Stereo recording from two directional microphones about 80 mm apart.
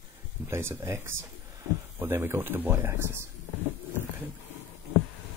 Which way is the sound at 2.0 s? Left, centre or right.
Right.